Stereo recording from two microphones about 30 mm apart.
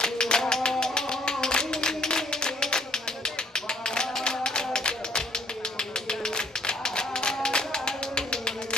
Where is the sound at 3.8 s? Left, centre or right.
Left.